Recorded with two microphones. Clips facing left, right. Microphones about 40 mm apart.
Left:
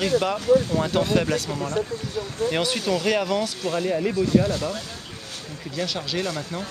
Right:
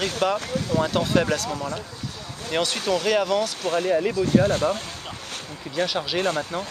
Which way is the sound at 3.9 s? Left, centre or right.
Centre.